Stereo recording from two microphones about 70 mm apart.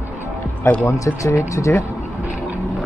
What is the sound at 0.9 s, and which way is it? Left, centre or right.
Speech, left.